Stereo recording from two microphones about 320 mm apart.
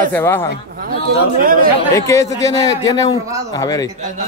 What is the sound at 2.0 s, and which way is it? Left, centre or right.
A man's voice, centre.